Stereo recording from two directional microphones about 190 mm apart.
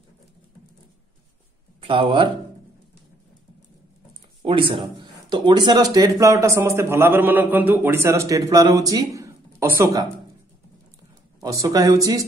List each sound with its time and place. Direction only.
1.8 s speech: 30° right (ahead or behind)
4.5 s speech: 25° right (ahead or behind)
11.4 s speech: 20° right (ahead or behind)